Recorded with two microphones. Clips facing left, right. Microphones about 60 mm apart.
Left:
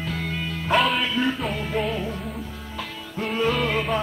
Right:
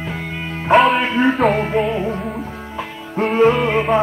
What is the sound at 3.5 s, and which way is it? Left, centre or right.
Music, right.